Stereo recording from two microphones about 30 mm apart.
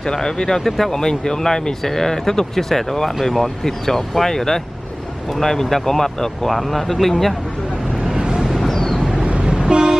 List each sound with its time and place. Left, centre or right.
0.1 s speech: centre
0.7 s speech: centre
0.9 s speech: left
8.4 s a sound: centre
9.1 s vehicle: right
9.6 s toot: right